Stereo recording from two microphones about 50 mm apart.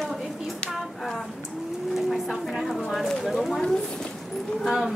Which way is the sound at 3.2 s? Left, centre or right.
Centre.